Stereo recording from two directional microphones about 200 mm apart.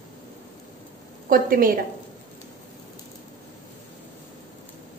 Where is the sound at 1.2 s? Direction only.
45° right (ahead or behind).